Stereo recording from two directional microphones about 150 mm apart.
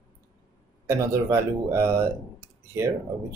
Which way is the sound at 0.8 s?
20° right (ahead or behind).